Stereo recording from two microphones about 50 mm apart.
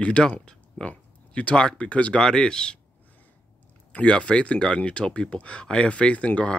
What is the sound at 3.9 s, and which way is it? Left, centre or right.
Speech, left.